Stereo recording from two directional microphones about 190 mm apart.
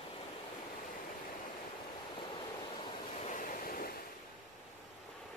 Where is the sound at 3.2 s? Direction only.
45° left (ahead or behind).